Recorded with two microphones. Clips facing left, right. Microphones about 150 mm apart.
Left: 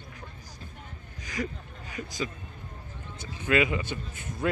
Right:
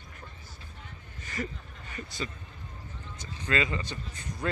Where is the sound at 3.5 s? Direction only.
10° left (ahead or behind).